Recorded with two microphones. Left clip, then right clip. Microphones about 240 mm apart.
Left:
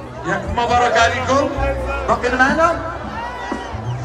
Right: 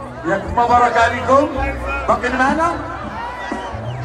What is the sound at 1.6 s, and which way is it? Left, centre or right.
Speech, left.